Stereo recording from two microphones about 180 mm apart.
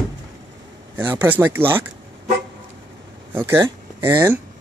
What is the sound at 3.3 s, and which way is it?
Speech, 15° right (ahead or behind).